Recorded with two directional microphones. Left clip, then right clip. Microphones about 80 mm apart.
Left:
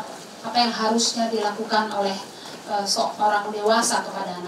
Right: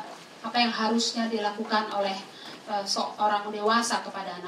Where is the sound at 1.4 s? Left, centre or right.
Centre.